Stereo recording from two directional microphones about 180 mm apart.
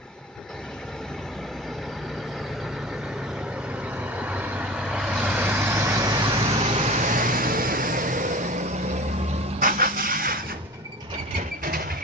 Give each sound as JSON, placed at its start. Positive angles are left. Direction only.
{"t": 4.0, "sound": "vehicle", "side_deg": -10}
{"t": 6.4, "sound": "vehicle", "side_deg": -35}
{"t": 9.6, "sound": "vehicle", "side_deg": -50}